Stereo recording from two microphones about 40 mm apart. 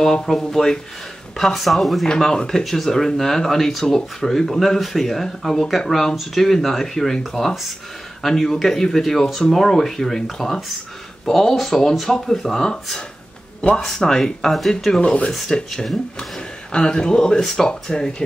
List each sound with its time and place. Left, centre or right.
0.0 s speech: centre
2.0 s speech: centre
13.7 s speech: centre
15.0 s speech: left
15.5 s speech: centre
17.4 s speech: centre
17.6 s speech: centre